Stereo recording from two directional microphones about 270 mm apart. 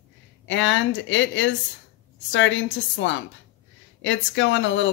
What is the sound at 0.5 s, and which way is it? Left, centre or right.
Speech, left.